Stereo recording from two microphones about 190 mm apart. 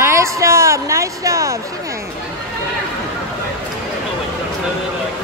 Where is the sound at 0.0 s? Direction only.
15° right (ahead or behind).